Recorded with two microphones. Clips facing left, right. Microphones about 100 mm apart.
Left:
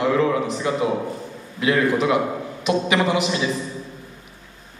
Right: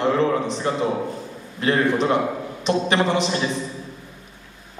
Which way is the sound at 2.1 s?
5° left (ahead or behind).